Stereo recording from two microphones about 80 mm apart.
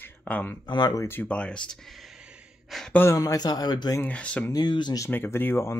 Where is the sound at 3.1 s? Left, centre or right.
Left.